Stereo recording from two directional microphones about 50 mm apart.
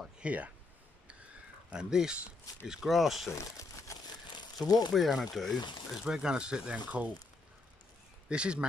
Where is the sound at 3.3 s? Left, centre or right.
Left.